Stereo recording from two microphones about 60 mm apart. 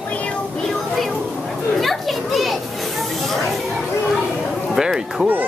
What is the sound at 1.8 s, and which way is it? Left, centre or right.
Children playing, centre.